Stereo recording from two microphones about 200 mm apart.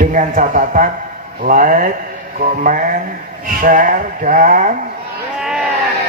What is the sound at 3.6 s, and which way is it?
A man's voice, 40° right (ahead or behind).